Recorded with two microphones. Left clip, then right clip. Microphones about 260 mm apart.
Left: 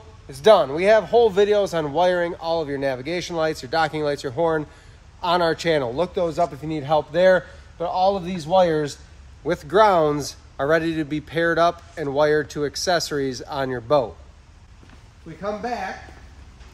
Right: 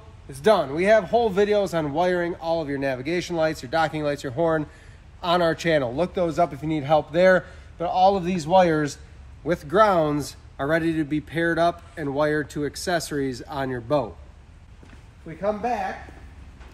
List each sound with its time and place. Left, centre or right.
0.3 s a man's voice: left